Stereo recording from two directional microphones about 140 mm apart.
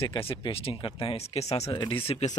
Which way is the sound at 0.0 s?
20° left (ahead or behind).